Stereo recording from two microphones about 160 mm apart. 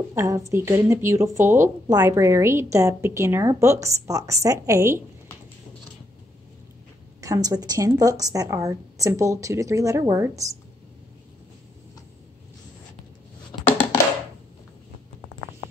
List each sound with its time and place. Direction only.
0.1 s a woman's voice: 20° right (ahead or behind)
7.2 s speech: 20° right (ahead or behind)